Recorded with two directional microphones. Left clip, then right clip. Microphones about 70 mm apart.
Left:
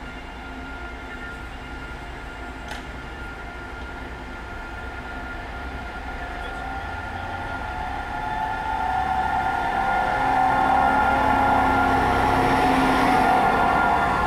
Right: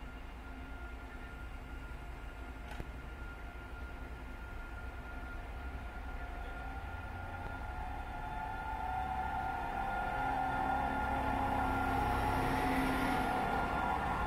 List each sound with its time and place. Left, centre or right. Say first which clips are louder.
9.0 s vehicle: left 15 dB; centre
10.9 s vehicle: left 17 dB; right